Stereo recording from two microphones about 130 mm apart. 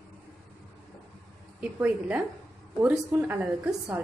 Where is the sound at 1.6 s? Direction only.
10° right (ahead or behind).